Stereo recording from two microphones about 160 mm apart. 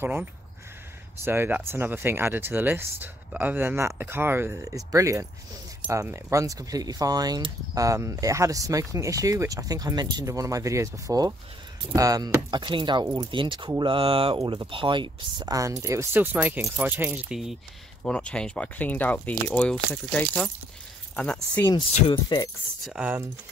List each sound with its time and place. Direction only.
0.0 s speech: 10° right (ahead or behind); by 21.6 s 5° left (ahead or behind)
22.1 s speech: 30° left (ahead or behind)
22.8 s speech: 10° right (ahead or behind)